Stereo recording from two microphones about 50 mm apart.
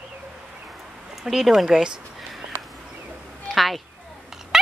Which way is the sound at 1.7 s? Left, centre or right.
Centre.